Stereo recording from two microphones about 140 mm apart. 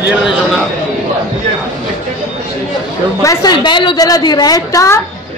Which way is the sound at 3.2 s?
25° left (ahead or behind).